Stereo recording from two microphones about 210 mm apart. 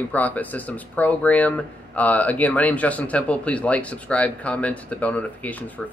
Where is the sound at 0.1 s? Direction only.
5° left (ahead or behind).